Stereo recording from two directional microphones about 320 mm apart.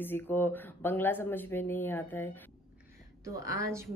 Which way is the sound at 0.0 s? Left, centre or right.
Centre.